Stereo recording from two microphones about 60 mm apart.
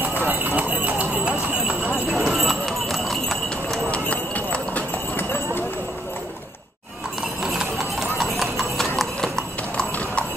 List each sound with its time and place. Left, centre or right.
0.0 s clip-clop: right
2.0 s clip-clop: centre
3.9 s clip-clop: left
5.1 s clip-clop: left
7.4 s clip-clop: centre